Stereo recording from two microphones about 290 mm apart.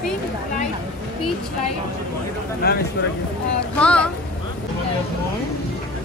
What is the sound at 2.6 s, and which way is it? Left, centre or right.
Speech, left.